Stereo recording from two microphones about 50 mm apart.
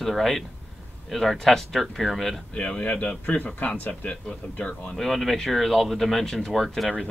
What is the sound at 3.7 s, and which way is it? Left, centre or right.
Speech, left.